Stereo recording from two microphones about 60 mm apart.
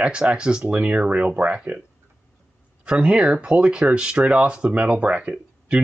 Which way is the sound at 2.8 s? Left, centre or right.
Centre.